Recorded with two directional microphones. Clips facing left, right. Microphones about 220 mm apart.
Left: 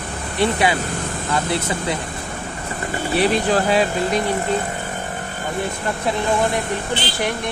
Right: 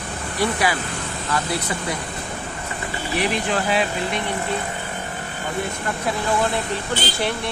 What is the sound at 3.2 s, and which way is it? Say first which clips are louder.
Speech: left 5 dB; 35° left (ahead or behind).